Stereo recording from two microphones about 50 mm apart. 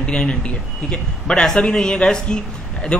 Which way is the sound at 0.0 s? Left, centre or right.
Left.